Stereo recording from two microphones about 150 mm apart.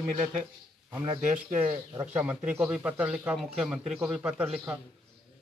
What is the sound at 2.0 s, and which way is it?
Speech, 10° right (ahead or behind).